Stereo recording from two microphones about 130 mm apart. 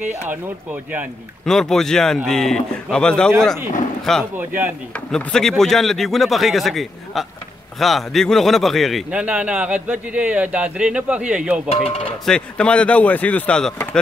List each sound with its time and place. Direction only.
0.3 s speech: 15° right (ahead or behind)
1.4 s speech: 5° left (ahead or behind)
9.1 s speech: 10° right (ahead or behind)
11.7 s speech: 50° left (ahead or behind)
12.3 s speech: 5° left (ahead or behind)